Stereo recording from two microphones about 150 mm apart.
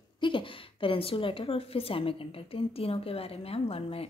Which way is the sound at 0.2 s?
35° left (ahead or behind).